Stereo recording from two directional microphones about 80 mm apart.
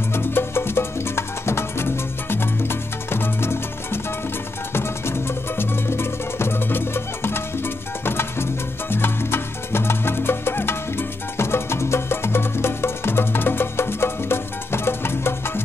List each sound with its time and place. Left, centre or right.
0.1 s music: left